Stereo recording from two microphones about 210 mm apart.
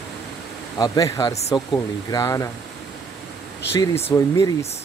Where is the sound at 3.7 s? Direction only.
10° left (ahead or behind).